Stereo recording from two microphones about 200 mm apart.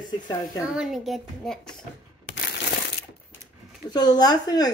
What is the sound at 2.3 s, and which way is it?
Coin, 55° left (ahead or behind).